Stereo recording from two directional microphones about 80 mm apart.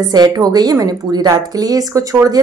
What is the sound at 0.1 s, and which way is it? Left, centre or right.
A woman's voice, right.